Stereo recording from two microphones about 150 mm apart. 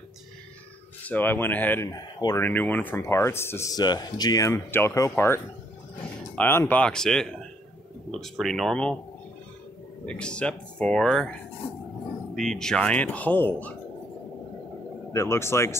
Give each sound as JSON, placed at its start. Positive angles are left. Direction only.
{"t": 1.0, "sound": "speech", "side_deg": 10}
{"t": 2.4, "sound": "speech", "side_deg": 10}
{"t": 10.0, "sound": "speech", "side_deg": 5}
{"t": 12.4, "sound": "speech", "side_deg": 5}
{"t": 15.1, "sound": "speech", "side_deg": 15}